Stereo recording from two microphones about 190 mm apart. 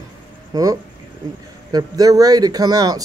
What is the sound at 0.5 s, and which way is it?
Speech, 20° right (ahead or behind).